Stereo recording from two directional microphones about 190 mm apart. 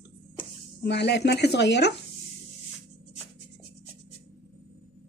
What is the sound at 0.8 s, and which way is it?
Speech, 65° left (ahead or behind).